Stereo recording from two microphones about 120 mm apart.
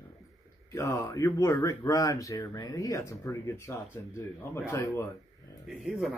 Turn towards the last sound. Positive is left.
turn(degrees=0)  # may be behind; listen again after turning